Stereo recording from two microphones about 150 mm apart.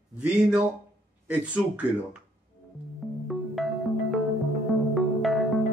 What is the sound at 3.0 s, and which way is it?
Music, centre (ahead or behind).